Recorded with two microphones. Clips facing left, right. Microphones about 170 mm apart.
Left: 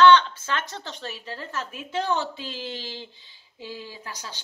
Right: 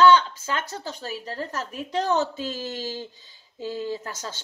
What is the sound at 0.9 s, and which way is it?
A woman's voice, 40° right (ahead or behind).